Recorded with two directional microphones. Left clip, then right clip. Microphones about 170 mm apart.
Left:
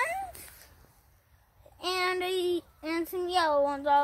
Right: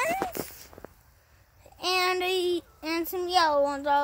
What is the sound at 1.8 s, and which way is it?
Speech, 50° right (ahead or behind).